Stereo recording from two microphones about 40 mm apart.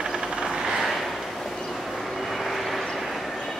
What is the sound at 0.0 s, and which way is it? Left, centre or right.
Vehicle, centre.